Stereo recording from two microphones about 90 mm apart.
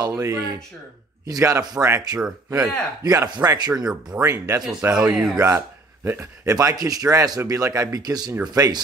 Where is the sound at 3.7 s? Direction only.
10° right (ahead or behind).